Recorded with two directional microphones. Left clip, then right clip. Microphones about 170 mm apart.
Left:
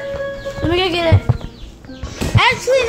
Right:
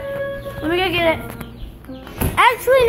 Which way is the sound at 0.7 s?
20° left (ahead or behind).